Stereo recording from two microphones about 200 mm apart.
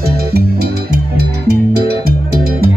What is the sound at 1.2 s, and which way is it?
Music, 55° right (ahead or behind).